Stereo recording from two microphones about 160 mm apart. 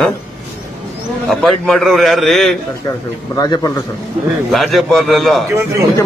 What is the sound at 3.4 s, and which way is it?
Speech, 20° left (ahead or behind).